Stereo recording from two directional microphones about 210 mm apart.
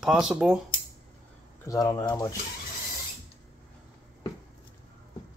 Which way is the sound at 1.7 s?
15° left (ahead or behind).